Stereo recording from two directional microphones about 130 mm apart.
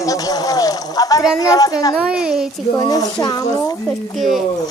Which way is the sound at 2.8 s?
30° left (ahead or behind).